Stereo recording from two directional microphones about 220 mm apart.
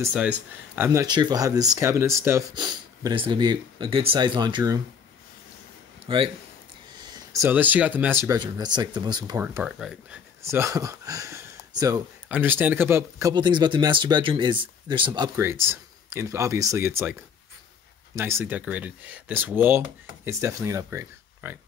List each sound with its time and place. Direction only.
0.0 s speech: 5° right (ahead or behind)
6.0 s speech: 25° right (ahead or behind)
7.0 s speech: 10° right (ahead or behind)
9.4 s speech: 10° right (ahead or behind)
10.4 s speech: 15° right (ahead or behind)